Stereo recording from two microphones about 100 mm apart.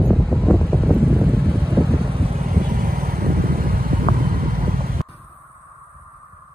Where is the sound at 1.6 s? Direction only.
60° right (ahead or behind).